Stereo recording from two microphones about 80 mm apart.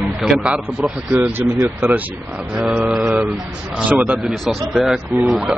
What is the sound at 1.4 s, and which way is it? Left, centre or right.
Speech, right.